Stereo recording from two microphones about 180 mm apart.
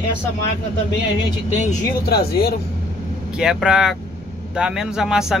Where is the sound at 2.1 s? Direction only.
60° left (ahead or behind).